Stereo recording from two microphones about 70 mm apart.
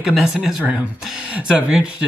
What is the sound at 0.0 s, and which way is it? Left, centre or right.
A man's voice, centre.